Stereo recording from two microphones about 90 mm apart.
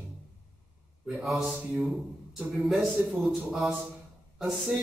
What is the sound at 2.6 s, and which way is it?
A man's voice, 5° right (ahead or behind).